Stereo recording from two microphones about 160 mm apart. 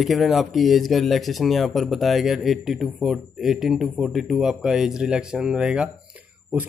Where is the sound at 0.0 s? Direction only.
Centre (ahead or behind).